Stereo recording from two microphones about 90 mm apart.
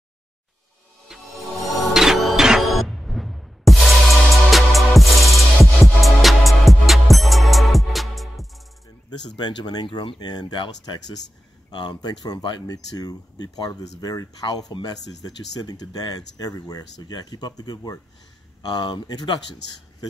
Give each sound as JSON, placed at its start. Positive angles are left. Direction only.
{"t": 1.1, "sound": "music", "side_deg": -5}
{"t": 9.4, "sound": "speech", "side_deg": 55}